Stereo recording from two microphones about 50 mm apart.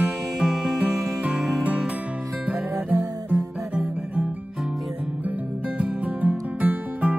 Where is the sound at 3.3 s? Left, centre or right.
Right.